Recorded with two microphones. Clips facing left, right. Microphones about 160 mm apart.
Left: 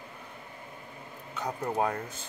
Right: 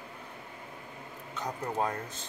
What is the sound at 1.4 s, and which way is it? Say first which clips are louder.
Speech: left 3 dB; 10° left (ahead or behind).